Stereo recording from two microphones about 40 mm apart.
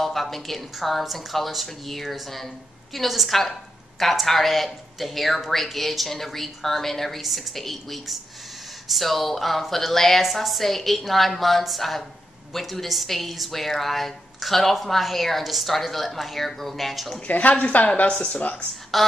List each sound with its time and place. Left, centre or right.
0.0 s a woman's voice: centre
17.3 s a woman's voice: left
18.9 s a woman's voice: centre